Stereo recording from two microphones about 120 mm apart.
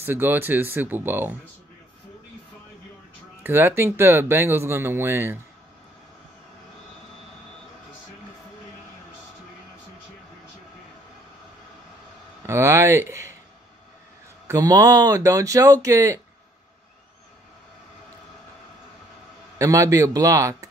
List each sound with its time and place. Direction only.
0.0 s speech: 15° right (ahead or behind)
3.4 s speech: 20° right (ahead or behind)
12.4 s speech: 25° right (ahead or behind)
14.5 s speech: 30° right (ahead or behind)
19.6 s speech: 25° right (ahead or behind)